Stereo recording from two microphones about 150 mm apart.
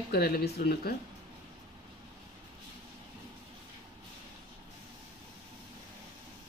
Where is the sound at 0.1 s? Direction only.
85° left.